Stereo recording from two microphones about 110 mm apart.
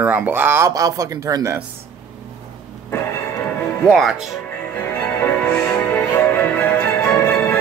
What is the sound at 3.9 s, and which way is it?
Speech, centre (ahead or behind).